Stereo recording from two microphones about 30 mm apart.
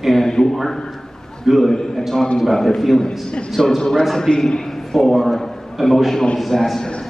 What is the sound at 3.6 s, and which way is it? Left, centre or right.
Speech, centre.